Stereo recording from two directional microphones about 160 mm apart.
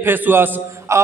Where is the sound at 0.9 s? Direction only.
20° right (ahead or behind).